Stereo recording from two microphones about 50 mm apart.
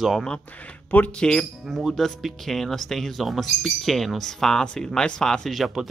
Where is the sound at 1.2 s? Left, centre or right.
Centre.